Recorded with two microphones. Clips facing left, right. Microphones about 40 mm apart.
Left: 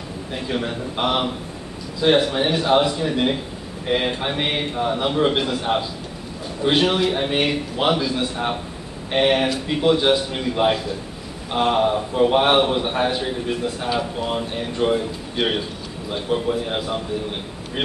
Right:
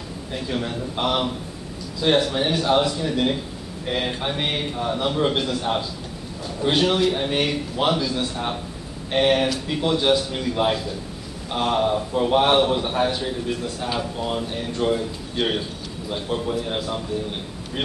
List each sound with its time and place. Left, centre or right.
0.3 s a man's voice: centre